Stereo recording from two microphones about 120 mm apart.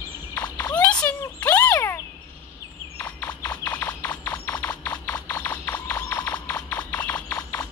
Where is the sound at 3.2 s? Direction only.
25° left (ahead or behind).